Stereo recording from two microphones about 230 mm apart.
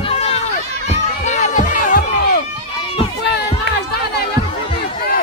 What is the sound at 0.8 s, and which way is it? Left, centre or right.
Music, left.